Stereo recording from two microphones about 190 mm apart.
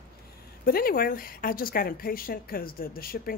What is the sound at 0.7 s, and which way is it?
Speech, 50° left (ahead or behind).